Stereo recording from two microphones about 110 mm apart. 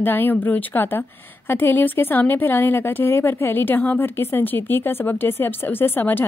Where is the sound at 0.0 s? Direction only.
20° left (ahead or behind).